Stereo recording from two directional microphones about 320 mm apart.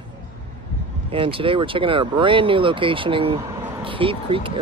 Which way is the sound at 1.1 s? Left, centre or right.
Centre.